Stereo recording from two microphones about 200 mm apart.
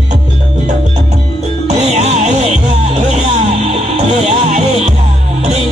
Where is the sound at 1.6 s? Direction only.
35° right (ahead or behind).